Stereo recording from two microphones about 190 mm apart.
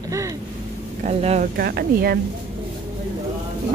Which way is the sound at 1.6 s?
55° right (ahead or behind).